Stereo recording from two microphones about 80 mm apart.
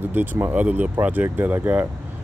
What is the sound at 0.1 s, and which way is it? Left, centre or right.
Speech, right.